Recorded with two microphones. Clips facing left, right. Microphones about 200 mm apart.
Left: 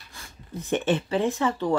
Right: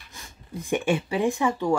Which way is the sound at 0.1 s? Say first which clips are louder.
Even; 15° right (ahead or behind).